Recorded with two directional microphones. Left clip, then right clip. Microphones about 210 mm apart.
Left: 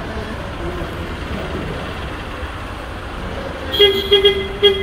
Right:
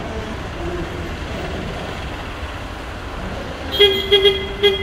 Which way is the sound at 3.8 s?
45° right (ahead or behind).